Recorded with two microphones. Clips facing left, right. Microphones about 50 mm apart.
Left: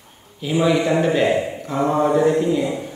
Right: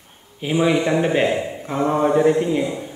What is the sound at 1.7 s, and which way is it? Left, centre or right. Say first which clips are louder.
Mantra: even; centre.